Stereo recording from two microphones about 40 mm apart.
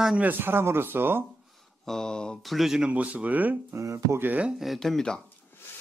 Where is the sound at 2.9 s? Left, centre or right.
Right.